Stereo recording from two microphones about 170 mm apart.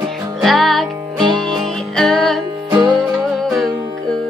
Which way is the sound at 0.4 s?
Centre (ahead or behind).